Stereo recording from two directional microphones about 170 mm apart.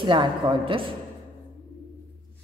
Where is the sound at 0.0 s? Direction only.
30° right (ahead or behind).